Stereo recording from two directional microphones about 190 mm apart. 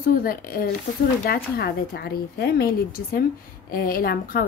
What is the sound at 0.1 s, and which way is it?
A woman's voice, 50° left (ahead or behind).